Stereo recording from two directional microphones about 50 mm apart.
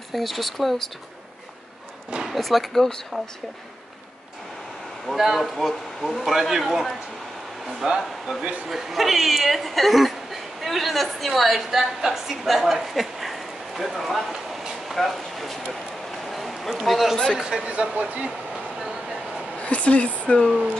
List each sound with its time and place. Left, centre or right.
0.1 s a man's voice: centre
2.2 s a man's voice: centre
5.0 s a man's voice: centre
16.3 s a sound: centre
17.4 s speech: centre
17.6 s speech: right
19.6 s speech: left